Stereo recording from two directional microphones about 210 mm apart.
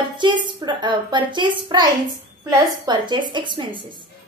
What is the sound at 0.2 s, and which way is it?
A woman's voice, 20° right (ahead or behind).